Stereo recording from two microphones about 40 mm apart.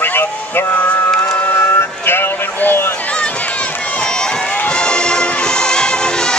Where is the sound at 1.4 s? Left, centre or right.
Left.